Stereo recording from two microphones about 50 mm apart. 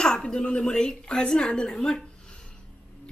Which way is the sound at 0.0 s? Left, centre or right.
Centre.